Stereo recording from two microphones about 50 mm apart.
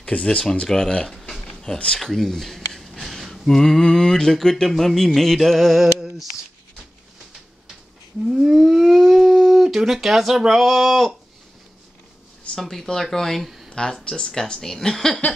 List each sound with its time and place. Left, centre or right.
0.0 s speech: left; by 6.0 s centre
8.3 s speech: centre
12.5 s speech: centre
13.7 s a sound: centre
13.9 s speech: centre